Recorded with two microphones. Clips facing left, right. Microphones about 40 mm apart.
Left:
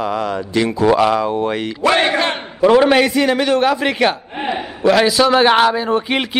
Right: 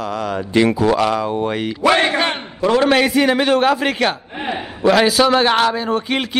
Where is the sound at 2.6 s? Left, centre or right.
Centre.